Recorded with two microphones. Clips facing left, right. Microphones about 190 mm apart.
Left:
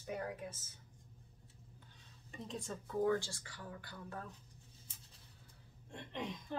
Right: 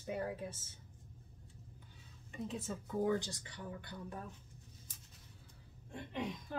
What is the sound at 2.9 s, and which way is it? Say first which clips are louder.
Speech: even; 20° right (ahead or behind).